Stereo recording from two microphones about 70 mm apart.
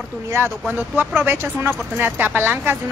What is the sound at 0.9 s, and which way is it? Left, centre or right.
Speech, right.